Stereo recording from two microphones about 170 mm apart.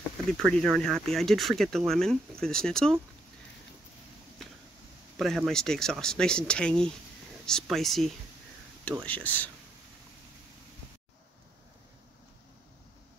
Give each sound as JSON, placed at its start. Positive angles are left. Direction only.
{"t": 0.3, "sound": "speech", "side_deg": 0}
{"t": 5.2, "sound": "speech", "side_deg": 0}